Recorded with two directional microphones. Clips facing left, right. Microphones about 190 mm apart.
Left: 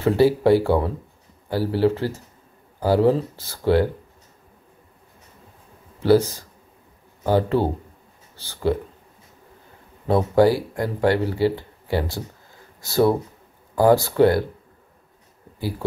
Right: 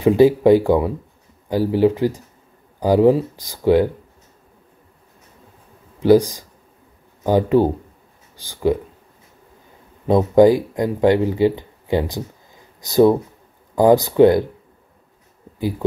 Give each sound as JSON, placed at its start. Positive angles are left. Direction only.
{"t": 0.0, "sound": "speech", "side_deg": -15}
{"t": 5.9, "sound": "speech", "side_deg": -15}
{"t": 10.0, "sound": "speech", "side_deg": -15}